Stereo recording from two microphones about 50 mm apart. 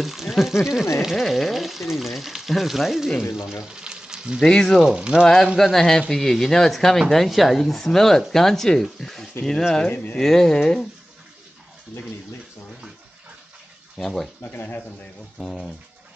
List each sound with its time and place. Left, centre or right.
0.0 s speech: centre
3.6 s frying: centre
4.4 s speech: centre
4.7 s speech: centre
5.2 s speech: centre
9.8 s speech: left
10.1 s speech: centre
13.9 s speech: centre
14.4 s speech: left
15.3 s speech: centre